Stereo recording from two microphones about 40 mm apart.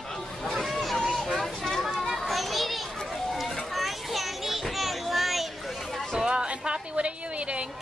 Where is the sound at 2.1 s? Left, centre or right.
Centre.